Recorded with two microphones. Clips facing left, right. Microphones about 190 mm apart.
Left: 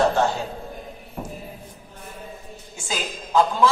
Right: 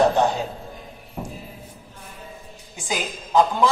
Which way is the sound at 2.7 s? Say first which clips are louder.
Right 2 dB; 15° right (ahead or behind).